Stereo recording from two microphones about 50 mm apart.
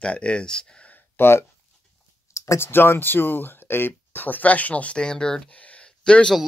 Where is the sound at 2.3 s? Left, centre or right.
Left.